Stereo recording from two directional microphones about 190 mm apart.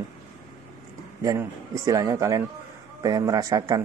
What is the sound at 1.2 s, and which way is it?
A man's voice, 15° right (ahead or behind).